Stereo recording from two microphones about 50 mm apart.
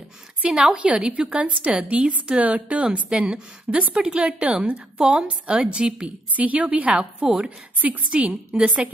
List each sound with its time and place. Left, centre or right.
0.5 s a woman's voice: centre
6.0 s a woman's voice: right; by 7.4 s centre
7.4 s a woman's voice: right